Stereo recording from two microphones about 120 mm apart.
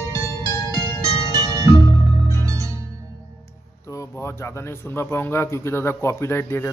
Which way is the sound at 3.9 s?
25° left (ahead or behind).